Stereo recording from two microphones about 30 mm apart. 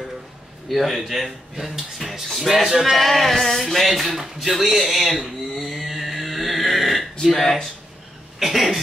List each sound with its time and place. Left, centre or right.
0.7 s speech: centre
5.8 s music: centre
7.3 s speech: centre
8.4 s speech: centre